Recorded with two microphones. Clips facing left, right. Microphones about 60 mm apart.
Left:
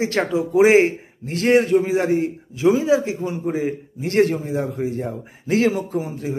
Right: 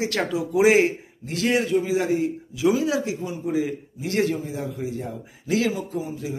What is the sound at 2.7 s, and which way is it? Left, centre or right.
Speech, left.